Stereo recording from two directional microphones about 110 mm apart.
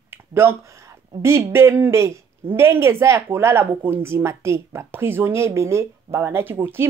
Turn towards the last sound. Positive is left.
turn(degrees=-20)  # may be behind; listen again after turning